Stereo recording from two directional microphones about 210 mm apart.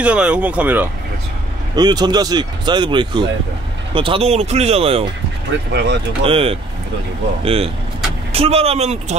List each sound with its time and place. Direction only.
0.0 s speech: 5° right (ahead or behind)
1.8 s speech: 20° right (ahead or behind)
5.7 s speech: 50° right (ahead or behind)
6.2 s speech: 30° right (ahead or behind)